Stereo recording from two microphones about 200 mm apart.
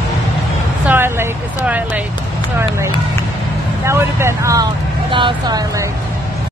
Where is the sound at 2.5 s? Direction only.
15° right (ahead or behind).